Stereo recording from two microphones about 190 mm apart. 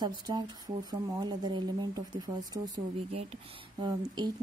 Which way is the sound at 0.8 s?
20° right (ahead or behind).